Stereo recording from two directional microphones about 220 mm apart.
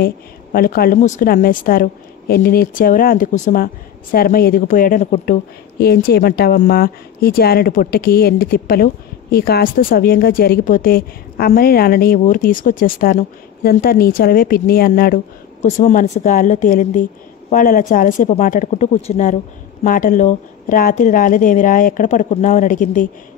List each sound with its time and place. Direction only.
0.0 s a woman's voice: 40° left (ahead or behind)